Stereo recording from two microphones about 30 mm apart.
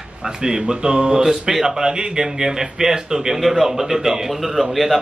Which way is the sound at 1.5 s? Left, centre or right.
Centre.